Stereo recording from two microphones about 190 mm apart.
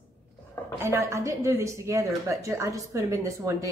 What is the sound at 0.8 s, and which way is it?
A woman's voice, 15° right (ahead or behind).